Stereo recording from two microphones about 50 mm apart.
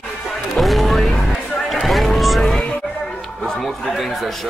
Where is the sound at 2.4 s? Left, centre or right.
Centre.